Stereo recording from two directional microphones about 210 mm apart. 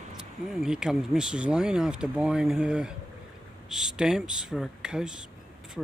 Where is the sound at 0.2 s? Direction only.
Centre (ahead or behind).